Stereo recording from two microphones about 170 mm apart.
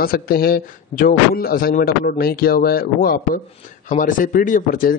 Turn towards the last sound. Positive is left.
turn(degrees=50)  # may be behind; listen again after turning